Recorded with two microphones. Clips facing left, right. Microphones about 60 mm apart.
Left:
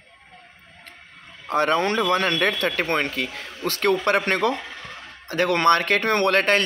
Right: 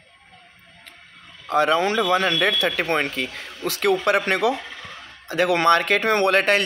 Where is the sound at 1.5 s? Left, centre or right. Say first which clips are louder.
Right 2 dB; centre.